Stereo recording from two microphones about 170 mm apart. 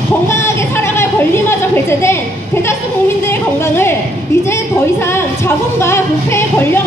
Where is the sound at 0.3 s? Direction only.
15° left (ahead or behind).